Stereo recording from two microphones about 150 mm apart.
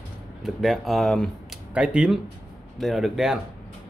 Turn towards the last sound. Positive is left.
turn(degrees=0)  # may be behind; listen again after turning